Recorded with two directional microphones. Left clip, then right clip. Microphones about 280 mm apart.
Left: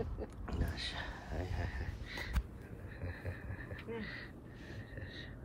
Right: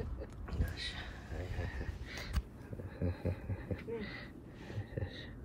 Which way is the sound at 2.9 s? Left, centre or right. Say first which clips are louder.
Right 6 dB; centre.